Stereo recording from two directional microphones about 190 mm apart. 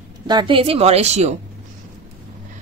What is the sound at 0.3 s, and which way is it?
Speech, 25° right (ahead or behind).